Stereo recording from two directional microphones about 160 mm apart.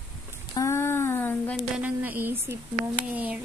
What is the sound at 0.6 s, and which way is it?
Speech, 15° left (ahead or behind).